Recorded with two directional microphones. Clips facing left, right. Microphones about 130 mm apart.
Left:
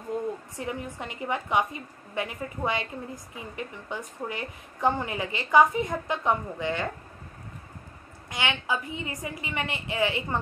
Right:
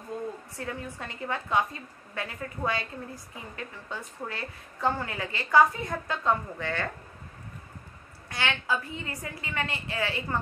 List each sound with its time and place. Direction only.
0.1 s a sound: 20° left (ahead or behind)
0.6 s a woman's voice: 15° left (ahead or behind)
8.3 s a woman's voice: 15° left (ahead or behind)